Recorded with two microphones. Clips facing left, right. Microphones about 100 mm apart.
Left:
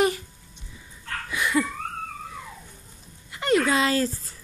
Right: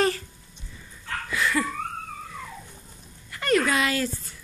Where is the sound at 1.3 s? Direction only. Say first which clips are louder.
Left 1 dB; 20° left (ahead or behind).